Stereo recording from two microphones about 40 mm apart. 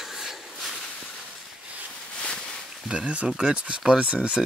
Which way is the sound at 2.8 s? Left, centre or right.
Right.